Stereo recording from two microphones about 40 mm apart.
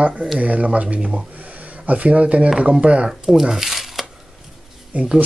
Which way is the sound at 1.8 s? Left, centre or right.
Right.